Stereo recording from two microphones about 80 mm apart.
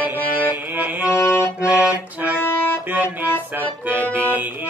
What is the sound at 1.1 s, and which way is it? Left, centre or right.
Accordion, left.